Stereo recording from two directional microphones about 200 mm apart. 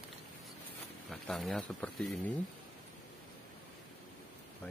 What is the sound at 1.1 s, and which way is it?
Speech, centre (ahead or behind).